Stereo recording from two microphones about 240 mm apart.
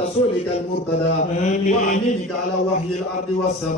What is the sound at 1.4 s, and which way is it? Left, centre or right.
Mantra, left.